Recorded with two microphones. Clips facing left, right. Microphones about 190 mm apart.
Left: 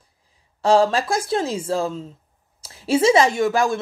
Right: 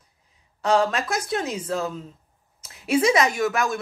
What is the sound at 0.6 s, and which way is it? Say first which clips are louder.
A woman's voice: left 4 dB; 30° left (ahead or behind).